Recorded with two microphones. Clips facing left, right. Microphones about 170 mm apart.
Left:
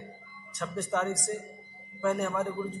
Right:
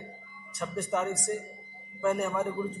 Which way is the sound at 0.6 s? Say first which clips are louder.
Even; 10° right (ahead or behind).